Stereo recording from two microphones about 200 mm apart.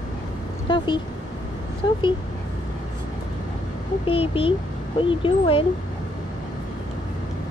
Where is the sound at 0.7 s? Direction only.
25° left (ahead or behind).